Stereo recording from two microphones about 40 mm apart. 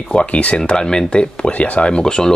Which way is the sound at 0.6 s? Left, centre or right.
Left.